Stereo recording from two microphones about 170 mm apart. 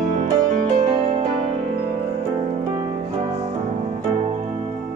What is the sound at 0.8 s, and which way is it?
Music, 35° right (ahead or behind).